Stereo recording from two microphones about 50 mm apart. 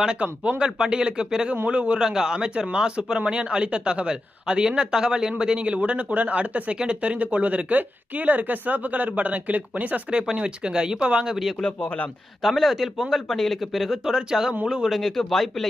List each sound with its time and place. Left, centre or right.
0.0 s speech: centre
1.7 s speech: right
2.0 s a woman's voice: centre; by 10.2 s right
10.2 s speech: centre
11.8 s a man's voice: left
12.4 s speech: centre
14.1 s speech: centre
14.9 s speech: centre